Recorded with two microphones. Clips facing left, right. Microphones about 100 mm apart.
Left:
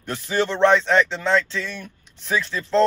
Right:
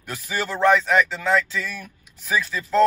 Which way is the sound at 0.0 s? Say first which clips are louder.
Left 5 dB; 5° right (ahead or behind).